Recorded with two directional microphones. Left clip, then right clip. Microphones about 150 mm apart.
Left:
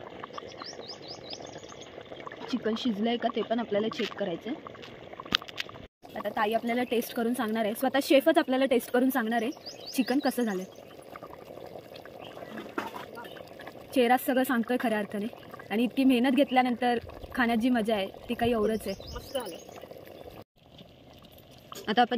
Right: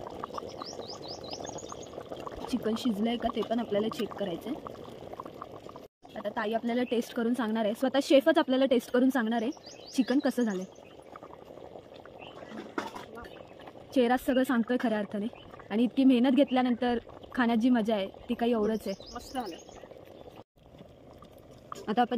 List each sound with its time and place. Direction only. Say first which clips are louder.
0.0 s chirp: right 2 dB; 25° right (ahead or behind)
0.7 s chirp: right 1 dB; centre (ahead or behind)
1.4 s pour: right 3 dB; 20° right (ahead or behind)
6.1 s speech: left 3 dB; 5° left (ahead or behind)
13.9 s speech: left 2 dB; centre (ahead or behind)
19.1 s bird: left 2 dB; 20° right (ahead or behind)
21.8 s speech: left 3 dB; centre (ahead or behind)